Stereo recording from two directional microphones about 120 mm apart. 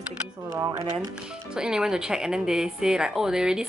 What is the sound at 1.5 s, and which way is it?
Speech, 5° right (ahead or behind).